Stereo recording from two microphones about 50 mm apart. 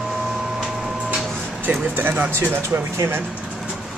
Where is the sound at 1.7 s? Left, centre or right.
Right.